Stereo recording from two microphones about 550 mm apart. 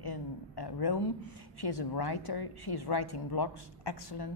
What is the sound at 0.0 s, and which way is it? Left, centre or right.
A woman's voice, left.